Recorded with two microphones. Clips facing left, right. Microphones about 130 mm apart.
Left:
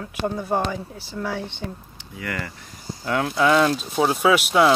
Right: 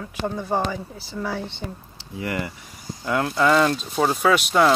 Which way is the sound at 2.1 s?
25° right (ahead or behind).